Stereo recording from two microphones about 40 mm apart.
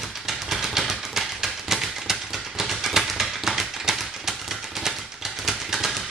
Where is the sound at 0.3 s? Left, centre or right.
Centre.